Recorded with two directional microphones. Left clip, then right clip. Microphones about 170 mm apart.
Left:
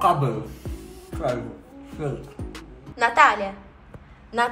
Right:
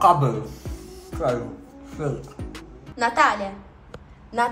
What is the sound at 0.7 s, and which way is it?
Music, 5° right (ahead or behind).